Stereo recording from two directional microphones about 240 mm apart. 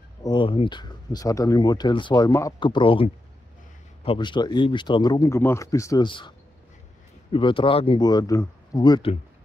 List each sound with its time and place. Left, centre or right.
0.2 s speech: centre
7.3 s speech: left